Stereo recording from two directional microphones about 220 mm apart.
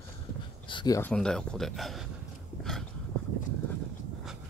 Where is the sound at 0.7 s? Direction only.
20° left (ahead or behind).